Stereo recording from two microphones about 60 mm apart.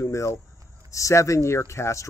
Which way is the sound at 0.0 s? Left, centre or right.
Left.